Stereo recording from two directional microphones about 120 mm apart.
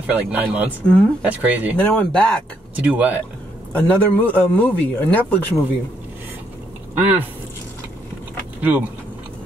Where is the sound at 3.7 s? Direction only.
15° left (ahead or behind).